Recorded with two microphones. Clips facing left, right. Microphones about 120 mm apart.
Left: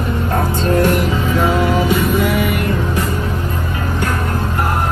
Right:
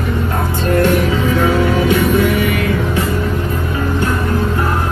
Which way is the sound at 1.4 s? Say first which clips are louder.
Even; 5° left (ahead or behind).